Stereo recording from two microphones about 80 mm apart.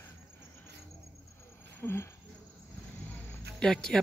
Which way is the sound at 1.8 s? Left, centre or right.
Left.